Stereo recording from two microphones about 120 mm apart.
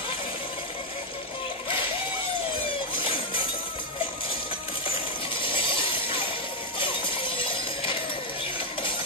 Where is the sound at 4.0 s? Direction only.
50° left (ahead or behind).